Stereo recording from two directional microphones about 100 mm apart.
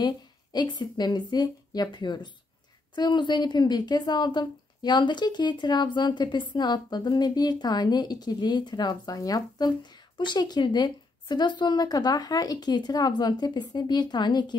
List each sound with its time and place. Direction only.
0.0 s a woman's voice: 45° left (ahead or behind)